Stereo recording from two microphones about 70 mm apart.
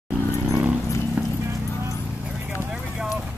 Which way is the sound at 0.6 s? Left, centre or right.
Right.